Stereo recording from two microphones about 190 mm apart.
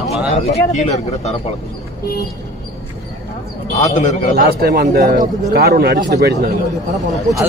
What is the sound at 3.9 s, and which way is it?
Speech, 40° left (ahead or behind).